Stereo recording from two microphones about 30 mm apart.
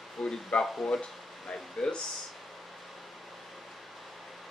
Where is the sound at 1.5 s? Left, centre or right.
Left.